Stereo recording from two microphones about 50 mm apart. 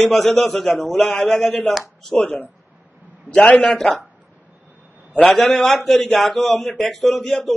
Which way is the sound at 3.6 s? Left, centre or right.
Centre.